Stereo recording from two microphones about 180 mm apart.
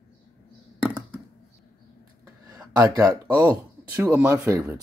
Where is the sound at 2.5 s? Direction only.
20° right (ahead or behind).